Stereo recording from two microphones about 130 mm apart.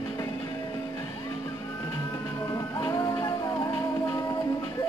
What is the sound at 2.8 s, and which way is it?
Music, 30° left (ahead or behind).